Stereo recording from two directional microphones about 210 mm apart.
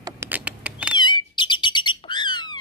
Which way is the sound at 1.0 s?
20° left (ahead or behind).